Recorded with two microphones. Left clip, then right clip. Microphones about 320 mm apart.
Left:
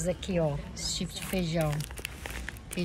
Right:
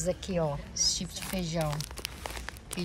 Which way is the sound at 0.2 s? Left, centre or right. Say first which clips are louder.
Left 1 dB; centre.